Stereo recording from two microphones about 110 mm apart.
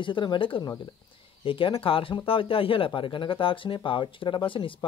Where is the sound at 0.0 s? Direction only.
45° left (ahead or behind).